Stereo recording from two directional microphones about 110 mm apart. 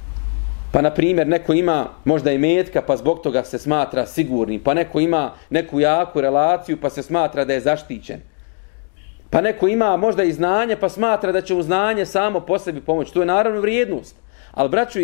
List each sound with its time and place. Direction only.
0.7 s a man's voice: 10° left (ahead or behind)
9.3 s a man's voice: 15° left (ahead or behind)